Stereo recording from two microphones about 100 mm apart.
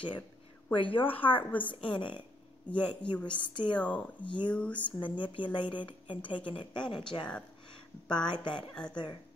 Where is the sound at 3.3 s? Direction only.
55° left (ahead or behind).